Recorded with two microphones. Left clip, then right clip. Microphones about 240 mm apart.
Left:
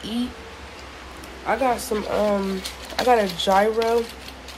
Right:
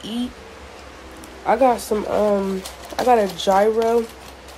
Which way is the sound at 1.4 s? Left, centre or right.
Centre.